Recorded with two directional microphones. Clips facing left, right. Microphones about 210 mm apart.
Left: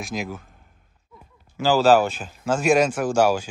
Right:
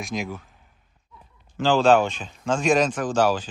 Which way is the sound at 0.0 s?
Centre (ahead or behind).